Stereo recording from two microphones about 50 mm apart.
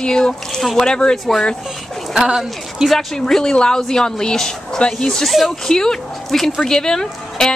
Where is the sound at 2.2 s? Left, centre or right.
Centre.